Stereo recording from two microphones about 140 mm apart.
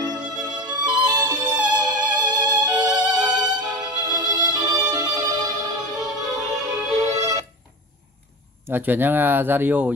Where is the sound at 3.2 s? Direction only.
30° right (ahead or behind).